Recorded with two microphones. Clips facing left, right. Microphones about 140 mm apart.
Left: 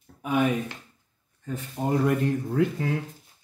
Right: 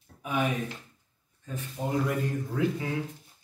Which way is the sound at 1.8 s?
55° left (ahead or behind).